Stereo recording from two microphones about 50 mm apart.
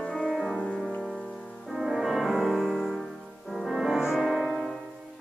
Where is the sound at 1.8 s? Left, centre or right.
Centre.